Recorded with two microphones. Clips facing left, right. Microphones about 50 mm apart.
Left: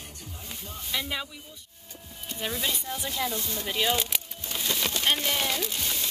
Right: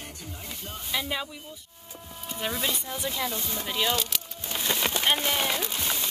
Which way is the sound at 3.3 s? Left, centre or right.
Right.